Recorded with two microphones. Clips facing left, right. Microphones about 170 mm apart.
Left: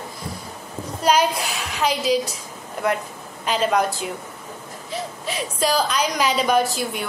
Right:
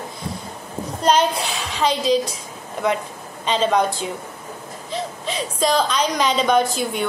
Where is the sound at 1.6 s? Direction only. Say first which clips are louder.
Right 2 dB; 30° right (ahead or behind).